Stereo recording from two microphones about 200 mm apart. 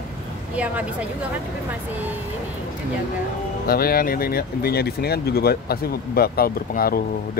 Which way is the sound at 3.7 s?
50° left (ahead or behind).